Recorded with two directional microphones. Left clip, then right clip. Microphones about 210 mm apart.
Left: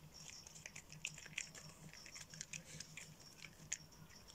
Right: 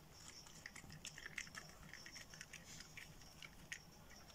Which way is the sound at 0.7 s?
15° left (ahead or behind).